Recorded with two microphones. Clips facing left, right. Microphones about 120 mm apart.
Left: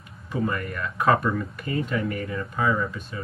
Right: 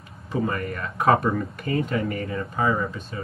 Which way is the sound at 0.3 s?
35° right (ahead or behind).